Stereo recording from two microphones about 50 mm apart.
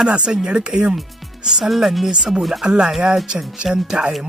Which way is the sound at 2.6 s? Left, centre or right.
Centre.